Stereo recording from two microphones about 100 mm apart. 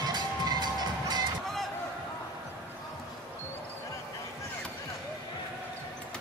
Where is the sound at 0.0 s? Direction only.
45° right (ahead or behind).